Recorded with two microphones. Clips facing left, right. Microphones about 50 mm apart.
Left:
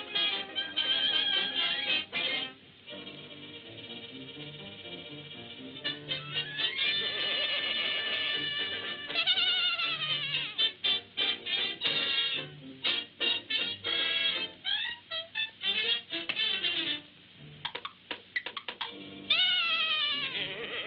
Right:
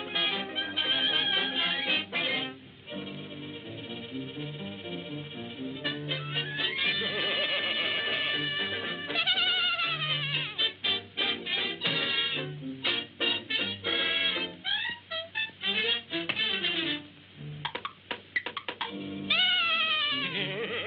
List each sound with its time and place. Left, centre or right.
0.1 s music: centre
7.1 s neigh: centre
7.9 s music: centre
19.4 s cat: centre
20.2 s goat: centre